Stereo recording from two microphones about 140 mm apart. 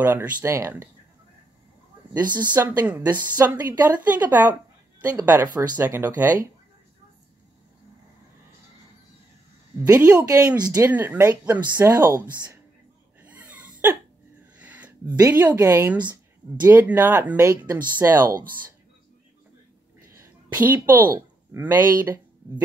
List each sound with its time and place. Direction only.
0.0 s speech: 15° right (ahead or behind)
2.6 s a woman's voice: 20° right (ahead or behind)
9.8 s a woman's voice: 20° right (ahead or behind)
10.9 s a woman's voice: 15° right (ahead or behind)
13.2 s wheeze: 10° right (ahead or behind)
14.6 s a sound: 10° right (ahead or behind)
15.4 s a woman's voice: 25° right (ahead or behind)
16.6 s speech: 15° right (ahead or behind)
20.2 s a woman's voice: 15° right (ahead or behind)